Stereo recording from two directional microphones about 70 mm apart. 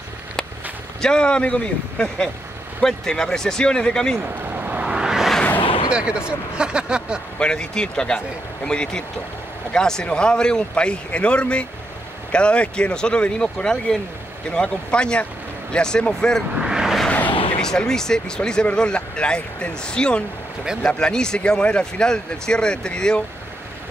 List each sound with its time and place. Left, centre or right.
1.0 s speech: centre
4.2 s a sound: right; by 5.3 s centre
5.9 s speech: centre
7.3 s speech: centre
16.5 s vehicle: centre
17.6 s speech: centre